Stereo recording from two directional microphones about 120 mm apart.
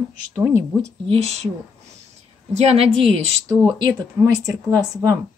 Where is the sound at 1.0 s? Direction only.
55° right (ahead or behind).